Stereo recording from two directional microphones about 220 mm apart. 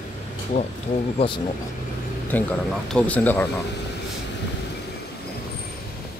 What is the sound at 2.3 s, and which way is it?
Speech, 5° left (ahead or behind).